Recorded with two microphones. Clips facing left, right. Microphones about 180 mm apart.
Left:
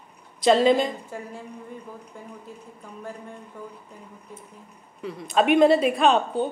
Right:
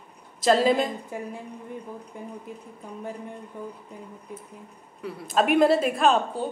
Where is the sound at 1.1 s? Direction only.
15° right (ahead or behind).